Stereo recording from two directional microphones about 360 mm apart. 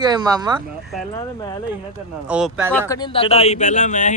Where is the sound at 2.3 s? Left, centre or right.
Centre.